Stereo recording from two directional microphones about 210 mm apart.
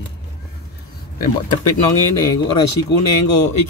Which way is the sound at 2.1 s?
15° left (ahead or behind).